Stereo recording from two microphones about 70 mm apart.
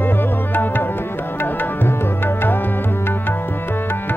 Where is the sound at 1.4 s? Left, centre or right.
Left.